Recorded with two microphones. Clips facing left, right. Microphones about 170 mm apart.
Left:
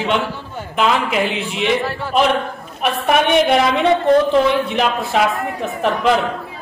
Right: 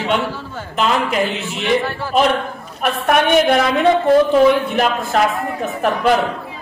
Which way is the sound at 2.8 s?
Centre (ahead or behind).